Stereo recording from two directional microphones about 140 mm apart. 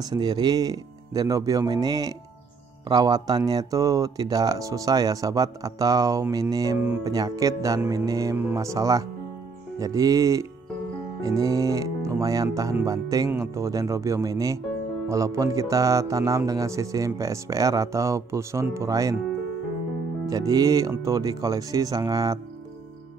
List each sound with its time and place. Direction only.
0.0 s speech: 30° right (ahead or behind)
20.2 s speech: 25° right (ahead or behind)